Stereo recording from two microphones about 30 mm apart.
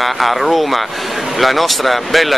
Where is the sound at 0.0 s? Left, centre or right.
Centre.